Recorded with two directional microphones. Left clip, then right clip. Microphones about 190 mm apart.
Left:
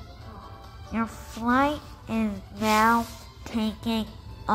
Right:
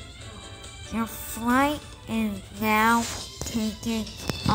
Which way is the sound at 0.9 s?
15° right (ahead or behind).